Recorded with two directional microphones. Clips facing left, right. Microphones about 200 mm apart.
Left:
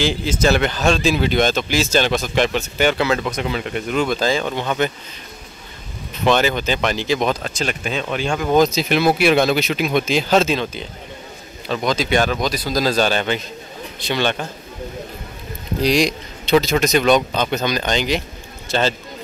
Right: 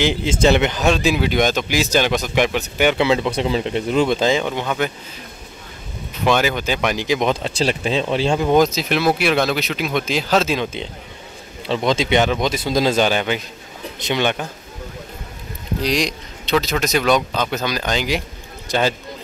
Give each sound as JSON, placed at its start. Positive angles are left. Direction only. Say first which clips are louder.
{"t": 0.0, "sound": "a man's voice", "louder": "right 2 dB", "side_deg": -20}
{"t": 3.3, "sound": "speech", "louder": "right 3 dB", "side_deg": -30}
{"t": 6.2, "sound": "a man's voice", "louder": "left 1 dB", "side_deg": -10}
{"t": 7.5, "sound": "speech", "louder": "right 4 dB", "side_deg": -30}
{"t": 8.5, "sound": "speech", "louder": "left 1 dB", "side_deg": 0}
{"t": 11.6, "sound": "speech", "louder": "right 2 dB", "side_deg": -25}
{"t": 15.8, "sound": "a man's voice", "louder": "left 4 dB", "side_deg": 0}